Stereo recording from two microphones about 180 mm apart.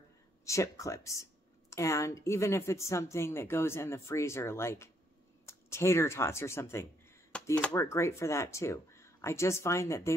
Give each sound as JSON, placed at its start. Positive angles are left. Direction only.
{"t": 0.5, "sound": "a woman's voice", "side_deg": 15}